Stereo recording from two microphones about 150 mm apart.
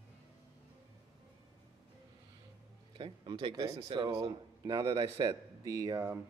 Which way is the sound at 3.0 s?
35° right (ahead or behind).